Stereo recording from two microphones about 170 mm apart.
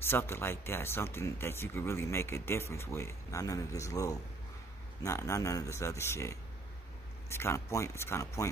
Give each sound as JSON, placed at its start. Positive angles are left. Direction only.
{"t": 0.0, "sound": "speech", "side_deg": 15}